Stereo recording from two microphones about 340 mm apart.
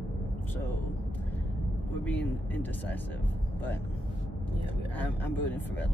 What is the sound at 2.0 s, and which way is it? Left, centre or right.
Vehicle, centre.